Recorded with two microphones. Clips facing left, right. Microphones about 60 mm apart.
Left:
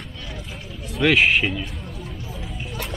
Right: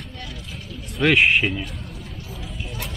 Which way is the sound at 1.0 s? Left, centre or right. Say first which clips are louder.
Even; centre.